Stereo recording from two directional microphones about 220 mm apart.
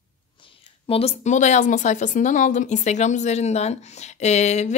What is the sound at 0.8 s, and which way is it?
Speech, 25° left (ahead or behind).